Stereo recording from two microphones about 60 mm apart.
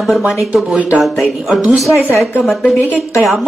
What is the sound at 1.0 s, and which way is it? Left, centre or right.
Speech, centre.